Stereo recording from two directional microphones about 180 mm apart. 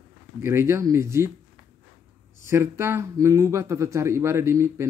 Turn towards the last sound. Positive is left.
turn(degrees=-15)  # may be behind; listen again after turning